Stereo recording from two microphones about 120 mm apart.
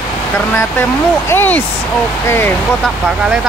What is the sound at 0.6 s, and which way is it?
Speech, 20° left (ahead or behind).